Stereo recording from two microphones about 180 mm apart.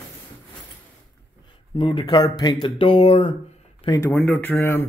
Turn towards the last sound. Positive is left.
turn(degrees=10)  # may be behind; listen again after turning